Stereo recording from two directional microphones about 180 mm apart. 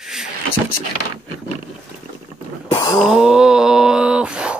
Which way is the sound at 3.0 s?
5° right (ahead or behind).